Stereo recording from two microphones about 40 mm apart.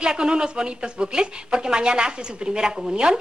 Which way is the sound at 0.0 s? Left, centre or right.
Right.